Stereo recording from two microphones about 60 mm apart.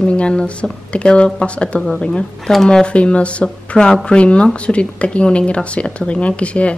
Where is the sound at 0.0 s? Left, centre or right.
Centre.